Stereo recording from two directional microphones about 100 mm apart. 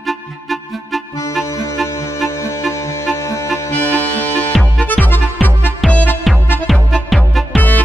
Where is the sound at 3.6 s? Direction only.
15° left (ahead or behind).